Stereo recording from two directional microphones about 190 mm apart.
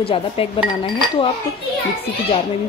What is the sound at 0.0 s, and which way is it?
Dishes, 30° left (ahead or behind).